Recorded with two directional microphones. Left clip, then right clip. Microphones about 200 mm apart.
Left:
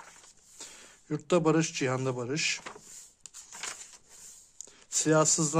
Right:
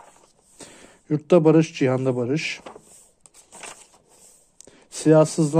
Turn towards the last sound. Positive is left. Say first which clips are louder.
# right 9 dB
turn(degrees=-15)  # may be behind; listen again after turning